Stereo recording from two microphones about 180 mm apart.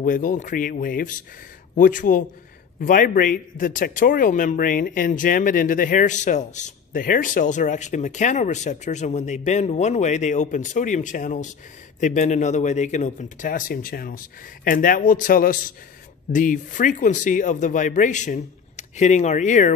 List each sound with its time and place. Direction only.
0.0 s speech: 45° left (ahead or behind)